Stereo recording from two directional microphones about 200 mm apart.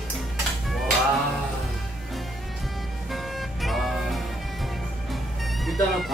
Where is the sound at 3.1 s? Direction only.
Centre (ahead or behind).